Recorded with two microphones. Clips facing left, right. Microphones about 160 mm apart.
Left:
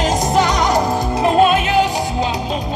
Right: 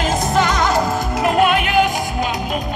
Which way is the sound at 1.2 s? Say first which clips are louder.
Left 2 dB; 25° left (ahead or behind).